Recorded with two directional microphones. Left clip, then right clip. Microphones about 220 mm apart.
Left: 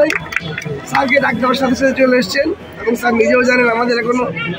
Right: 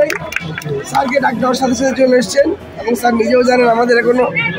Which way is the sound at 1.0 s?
Centre (ahead or behind).